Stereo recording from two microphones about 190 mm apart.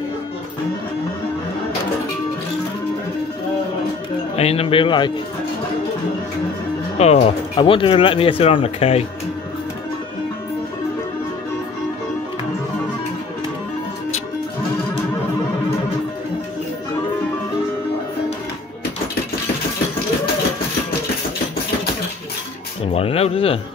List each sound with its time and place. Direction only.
4.4 s speech: 30° left (ahead or behind)
7.0 s speech: 35° left (ahead or behind)
22.9 s a sound: 30° left (ahead or behind)